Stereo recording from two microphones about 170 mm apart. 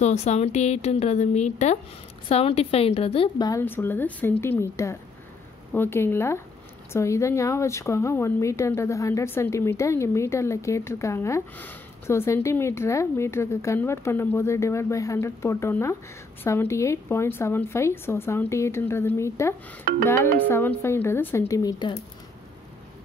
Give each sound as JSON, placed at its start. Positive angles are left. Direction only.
{"t": 0.0, "sound": "a woman's voice", "side_deg": 40}
{"t": 3.4, "sound": "speech", "side_deg": 15}